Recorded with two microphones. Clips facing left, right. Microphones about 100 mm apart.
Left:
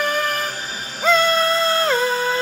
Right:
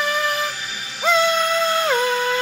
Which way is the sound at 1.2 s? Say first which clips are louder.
Left 1 dB; 35° left (ahead or behind).